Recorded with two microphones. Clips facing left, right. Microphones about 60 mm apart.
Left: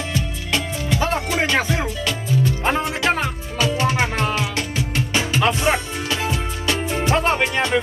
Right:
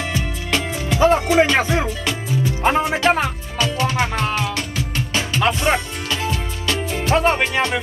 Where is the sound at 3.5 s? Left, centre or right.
Left.